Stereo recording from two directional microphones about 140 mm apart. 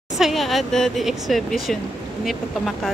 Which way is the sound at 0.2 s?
Centre (ahead or behind).